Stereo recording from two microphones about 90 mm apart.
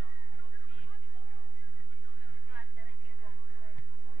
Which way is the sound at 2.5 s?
15° right (ahead or behind).